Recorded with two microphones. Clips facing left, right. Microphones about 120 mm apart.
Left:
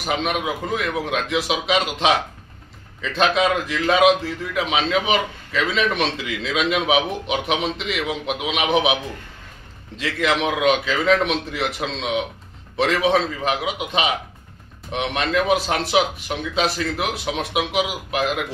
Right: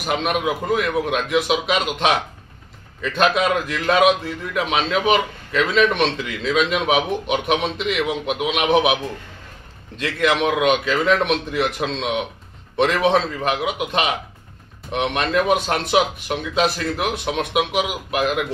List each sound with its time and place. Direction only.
0.0 s a man's voice: centre (ahead or behind)
9.9 s a man's voice: centre (ahead or behind)